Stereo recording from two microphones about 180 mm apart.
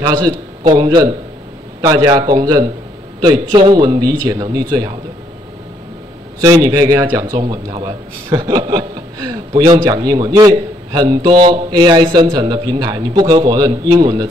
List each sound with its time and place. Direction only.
0.0 s a man's voice: 20° right (ahead or behind)
6.4 s a man's voice: 20° right (ahead or behind)